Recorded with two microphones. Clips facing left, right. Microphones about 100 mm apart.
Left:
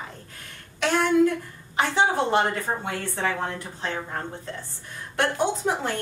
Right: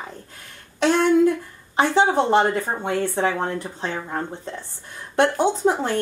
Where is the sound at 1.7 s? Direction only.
30° right (ahead or behind).